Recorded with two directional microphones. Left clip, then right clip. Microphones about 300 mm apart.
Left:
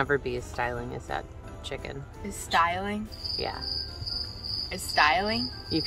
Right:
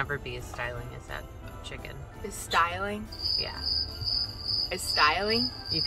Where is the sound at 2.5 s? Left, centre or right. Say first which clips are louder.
Left 2 dB; centre.